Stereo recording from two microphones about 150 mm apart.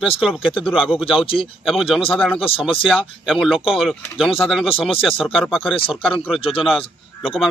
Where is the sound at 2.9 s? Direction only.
5° right (ahead or behind).